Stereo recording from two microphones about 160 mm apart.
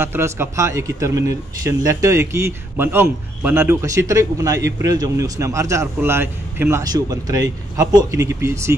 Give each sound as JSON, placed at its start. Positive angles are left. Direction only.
{"t": 0.0, "sound": "a man's voice", "side_deg": -15}